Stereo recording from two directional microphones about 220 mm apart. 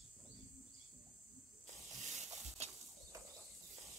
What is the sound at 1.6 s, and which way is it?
Snake, 30° right (ahead or behind).